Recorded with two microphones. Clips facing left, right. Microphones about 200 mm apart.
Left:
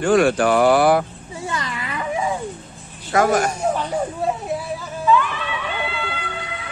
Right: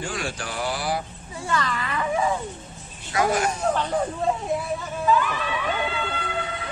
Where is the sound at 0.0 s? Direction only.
60° left (ahead or behind).